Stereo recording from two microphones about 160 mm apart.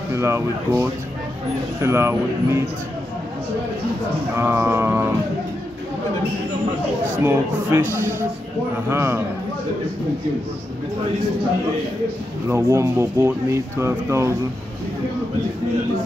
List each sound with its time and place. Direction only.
0.1 s speech: 15° right (ahead or behind)
4.4 s speech: 15° right (ahead or behind)
7.2 s speech: 15° right (ahead or behind)
12.4 s speech: 15° right (ahead or behind)